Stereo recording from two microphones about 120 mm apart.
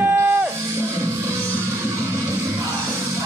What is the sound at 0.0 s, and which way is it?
Music, 15° right (ahead or behind).